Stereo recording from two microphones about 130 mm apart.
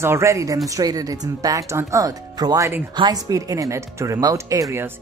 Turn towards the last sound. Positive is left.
turn(degrees=-20)  # may be behind; listen again after turning